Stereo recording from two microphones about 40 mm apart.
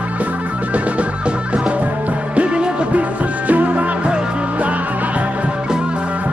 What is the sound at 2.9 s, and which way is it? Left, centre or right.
Music, right.